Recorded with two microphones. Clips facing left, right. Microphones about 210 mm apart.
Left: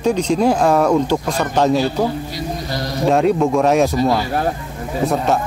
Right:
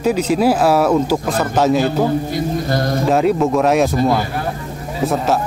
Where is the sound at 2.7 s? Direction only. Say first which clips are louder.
Right 6 dB; 50° right (ahead or behind).